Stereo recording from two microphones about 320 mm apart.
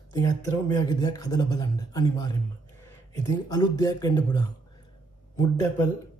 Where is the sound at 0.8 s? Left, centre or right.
Centre.